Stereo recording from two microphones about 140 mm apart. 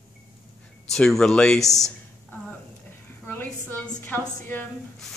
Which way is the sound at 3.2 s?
15° left (ahead or behind).